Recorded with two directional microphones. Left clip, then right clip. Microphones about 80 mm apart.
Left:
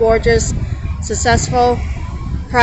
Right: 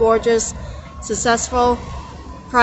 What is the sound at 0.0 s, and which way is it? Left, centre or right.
A woman's voice, right.